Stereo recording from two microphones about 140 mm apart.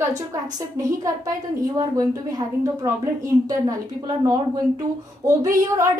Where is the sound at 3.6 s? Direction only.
30° right (ahead or behind).